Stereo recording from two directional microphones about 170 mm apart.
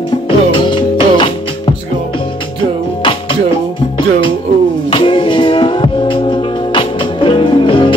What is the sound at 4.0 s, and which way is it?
Music, 30° left (ahead or behind).